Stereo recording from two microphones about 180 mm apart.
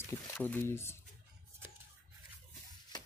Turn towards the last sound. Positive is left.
turn(degrees=20)  # may be behind; listen again after turning